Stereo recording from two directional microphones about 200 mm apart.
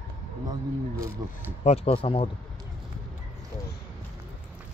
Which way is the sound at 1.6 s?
30° left (ahead or behind).